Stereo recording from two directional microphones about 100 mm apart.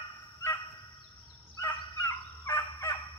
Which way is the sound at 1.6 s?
30° left (ahead or behind).